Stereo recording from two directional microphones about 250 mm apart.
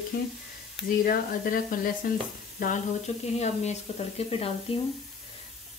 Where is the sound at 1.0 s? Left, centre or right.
Left.